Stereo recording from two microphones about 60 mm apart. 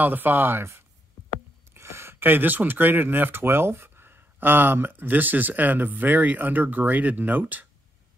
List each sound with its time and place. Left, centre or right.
0.0 s speech: right